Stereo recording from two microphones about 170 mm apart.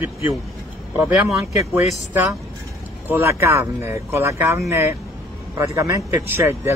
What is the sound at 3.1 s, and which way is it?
Speech, 15° right (ahead or behind).